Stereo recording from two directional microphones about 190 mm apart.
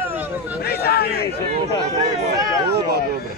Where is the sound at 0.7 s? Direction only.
55° left (ahead or behind).